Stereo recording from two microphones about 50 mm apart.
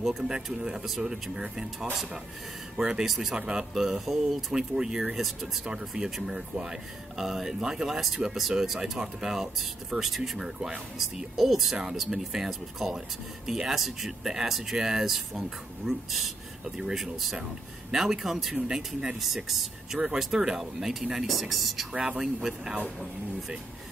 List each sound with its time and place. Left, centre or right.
0.0 s speech: centre
3.1 s speech: centre